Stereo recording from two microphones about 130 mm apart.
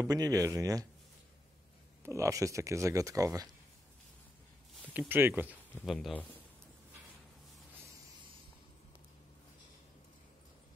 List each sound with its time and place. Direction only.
0.0 s speech: 25° right (ahead or behind)
2.0 s speech: 25° right (ahead or behind)
4.9 s speech: 15° right (ahead or behind)
5.9 s a man's voice: centre (ahead or behind)